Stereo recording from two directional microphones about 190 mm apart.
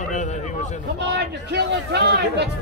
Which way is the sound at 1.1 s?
60° right (ahead or behind).